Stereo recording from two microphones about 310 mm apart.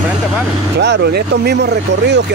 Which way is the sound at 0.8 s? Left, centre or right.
Right.